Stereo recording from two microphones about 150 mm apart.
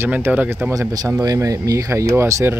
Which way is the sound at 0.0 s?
10° right (ahead or behind).